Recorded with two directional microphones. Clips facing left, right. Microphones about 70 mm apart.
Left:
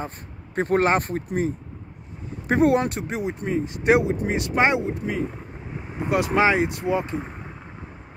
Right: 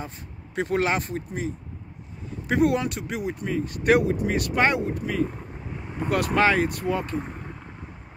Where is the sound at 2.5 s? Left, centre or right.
Left; by 7.5 s centre.